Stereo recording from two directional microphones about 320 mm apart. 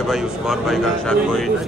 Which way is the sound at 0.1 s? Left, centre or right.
Centre.